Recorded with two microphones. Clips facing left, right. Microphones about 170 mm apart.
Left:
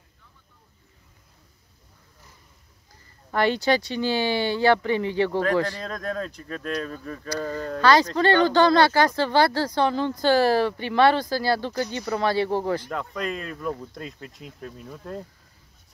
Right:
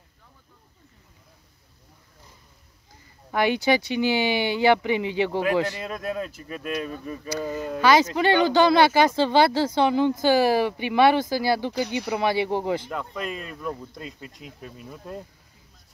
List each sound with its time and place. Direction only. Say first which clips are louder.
3.3 s speech: even; 15° right (ahead or behind)
12.9 s speech: left 2 dB; centre (ahead or behind)